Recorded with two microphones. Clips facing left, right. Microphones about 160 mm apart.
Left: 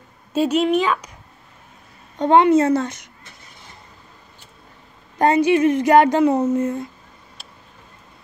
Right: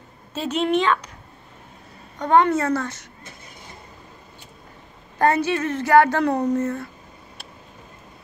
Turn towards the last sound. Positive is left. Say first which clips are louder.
# left 3 dB
turn(degrees=15)  # may be behind; listen again after turning